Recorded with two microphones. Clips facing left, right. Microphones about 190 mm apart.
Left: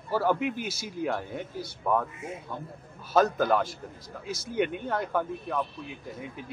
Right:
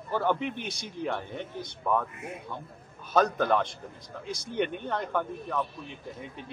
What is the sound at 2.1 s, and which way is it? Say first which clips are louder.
Speech: left 1 dB; 60° right (ahead or behind).